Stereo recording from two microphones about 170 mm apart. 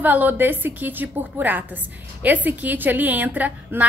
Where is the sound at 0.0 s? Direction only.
10° right (ahead or behind).